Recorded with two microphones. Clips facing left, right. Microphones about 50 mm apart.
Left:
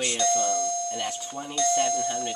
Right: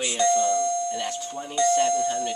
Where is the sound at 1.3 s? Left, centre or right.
Centre.